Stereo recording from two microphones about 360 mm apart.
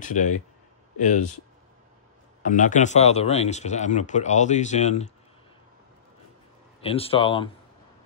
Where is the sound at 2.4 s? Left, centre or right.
Left.